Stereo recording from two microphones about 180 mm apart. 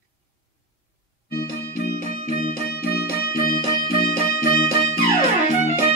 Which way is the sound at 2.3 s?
60° left (ahead or behind).